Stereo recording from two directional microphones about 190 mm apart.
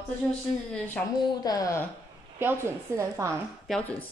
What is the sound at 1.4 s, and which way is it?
Speech, 20° left (ahead or behind).